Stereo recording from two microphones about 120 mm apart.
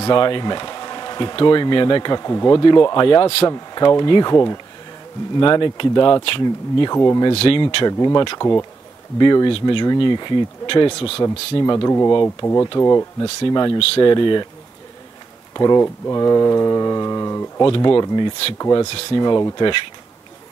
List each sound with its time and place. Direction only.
0.0 s speech: 40° left (ahead or behind)
3.4 s speech: 35° left (ahead or behind)
5.4 s speech: 40° left (ahead or behind)
7.3 s speech: 50° left (ahead or behind)
7.6 s speech: 35° left (ahead or behind)
11.5 s speech: 30° left (ahead or behind)
15.5 s speech: 30° left (ahead or behind)
17.6 s speech: 45° left (ahead or behind)
18.9 s speech: 45° left (ahead or behind)